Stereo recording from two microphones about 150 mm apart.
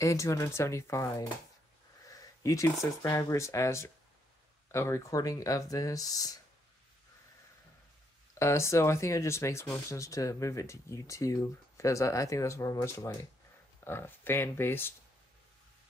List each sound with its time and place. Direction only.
0.0 s speech: 20° left (ahead or behind)
8.4 s speech: 20° left (ahead or behind)